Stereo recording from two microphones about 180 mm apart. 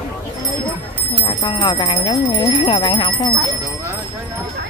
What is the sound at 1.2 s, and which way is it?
Speech, 30° left (ahead or behind).